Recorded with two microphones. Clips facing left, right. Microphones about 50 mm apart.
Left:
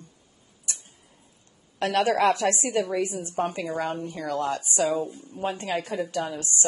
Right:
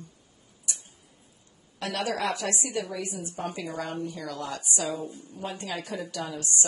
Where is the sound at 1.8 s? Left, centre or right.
Left.